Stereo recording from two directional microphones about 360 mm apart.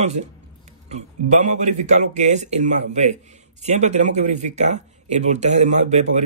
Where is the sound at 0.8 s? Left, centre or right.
Centre.